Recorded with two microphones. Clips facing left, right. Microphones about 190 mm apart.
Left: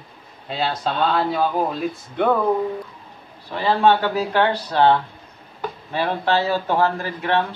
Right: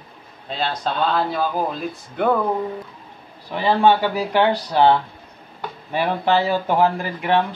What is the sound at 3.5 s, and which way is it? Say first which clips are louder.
Speech: right 1 dB; 15° right (ahead or behind).